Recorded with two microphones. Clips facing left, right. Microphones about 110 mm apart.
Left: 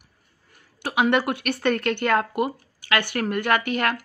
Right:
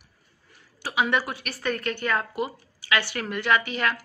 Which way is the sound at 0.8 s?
55° left (ahead or behind).